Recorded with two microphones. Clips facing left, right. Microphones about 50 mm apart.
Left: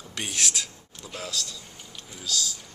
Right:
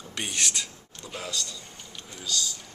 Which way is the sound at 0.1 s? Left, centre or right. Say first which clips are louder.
Even; centre.